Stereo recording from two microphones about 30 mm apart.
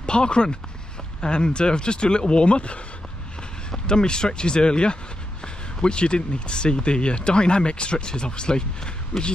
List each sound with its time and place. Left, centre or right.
0.0 s speech: left
3.7 s speech: left
9.1 s speech: left